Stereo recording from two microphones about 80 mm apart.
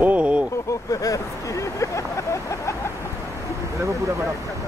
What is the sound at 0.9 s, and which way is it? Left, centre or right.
Speech, left.